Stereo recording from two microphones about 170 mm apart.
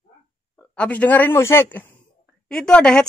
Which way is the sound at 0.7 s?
10° left (ahead or behind).